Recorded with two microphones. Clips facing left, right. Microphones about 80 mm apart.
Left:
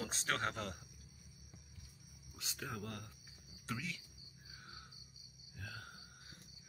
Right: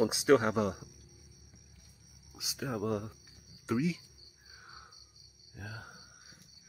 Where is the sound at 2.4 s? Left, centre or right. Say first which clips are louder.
Right 10 dB; centre.